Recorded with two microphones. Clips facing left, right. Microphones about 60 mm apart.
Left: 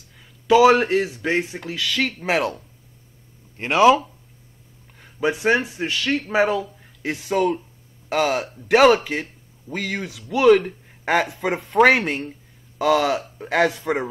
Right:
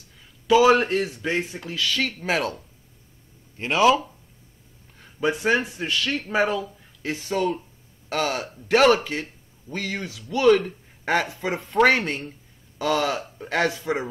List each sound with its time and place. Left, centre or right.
0.5 s speech: centre
3.5 s speech: left
4.9 s speech: centre